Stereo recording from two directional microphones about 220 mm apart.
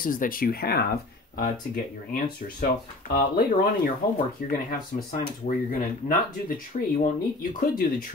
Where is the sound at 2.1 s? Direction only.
40° left (ahead or behind).